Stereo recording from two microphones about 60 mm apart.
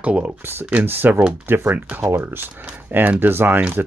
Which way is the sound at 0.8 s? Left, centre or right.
Right.